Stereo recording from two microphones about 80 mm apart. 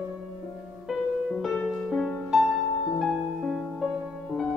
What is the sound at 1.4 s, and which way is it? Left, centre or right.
Music, centre.